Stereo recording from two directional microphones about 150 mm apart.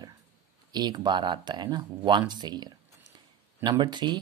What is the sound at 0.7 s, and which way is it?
Speech, 25° right (ahead or behind).